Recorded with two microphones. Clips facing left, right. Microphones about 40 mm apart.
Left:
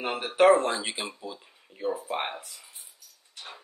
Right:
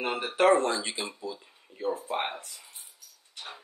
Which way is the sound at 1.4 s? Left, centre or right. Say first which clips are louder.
Left 3 dB; centre.